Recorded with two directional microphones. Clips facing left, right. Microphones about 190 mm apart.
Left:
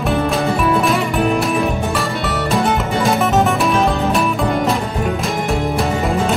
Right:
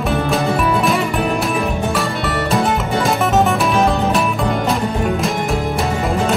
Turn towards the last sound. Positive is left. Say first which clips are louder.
# even
turn(degrees=0)  # may be behind; listen again after turning